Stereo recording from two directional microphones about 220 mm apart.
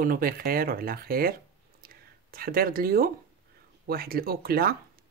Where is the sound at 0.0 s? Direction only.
40° right (ahead or behind).